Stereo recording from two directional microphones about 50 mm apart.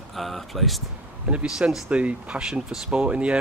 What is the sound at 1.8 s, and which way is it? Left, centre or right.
Speech, right.